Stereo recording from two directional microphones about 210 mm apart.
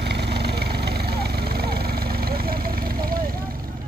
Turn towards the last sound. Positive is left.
turn(degrees=-45)  # may be behind; listen again after turning